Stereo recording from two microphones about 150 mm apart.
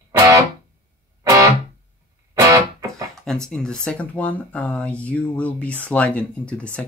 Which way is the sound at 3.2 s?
5° left (ahead or behind).